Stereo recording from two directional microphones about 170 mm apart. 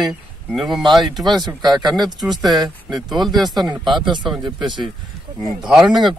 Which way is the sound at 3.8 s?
30° right (ahead or behind).